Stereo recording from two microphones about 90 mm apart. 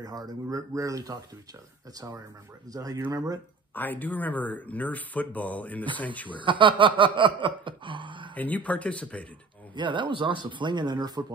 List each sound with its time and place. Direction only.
0.0 s speech: 45° right (ahead or behind)
2.7 s speech: 40° right (ahead or behind)
3.7 s speech: 20° left (ahead or behind)
6.3 s a sound: 65° right (ahead or behind)
8.4 s speech: 15° left (ahead or behind)
9.8 s a sound: 60° right (ahead or behind)